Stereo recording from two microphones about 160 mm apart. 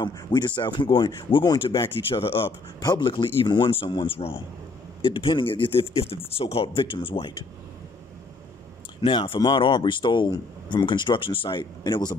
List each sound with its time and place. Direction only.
0.0 s a man's voice: 25° left (ahead or behind)
2.0 s speech: 35° left (ahead or behind)
9.0 s a man's voice: 30° left (ahead or behind)